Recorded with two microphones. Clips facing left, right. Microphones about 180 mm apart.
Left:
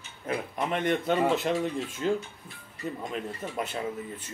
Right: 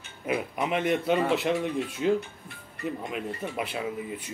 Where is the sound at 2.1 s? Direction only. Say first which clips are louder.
Right 4 dB; 60° right (ahead or behind).